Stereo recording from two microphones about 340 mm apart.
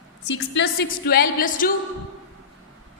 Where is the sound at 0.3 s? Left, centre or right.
Left.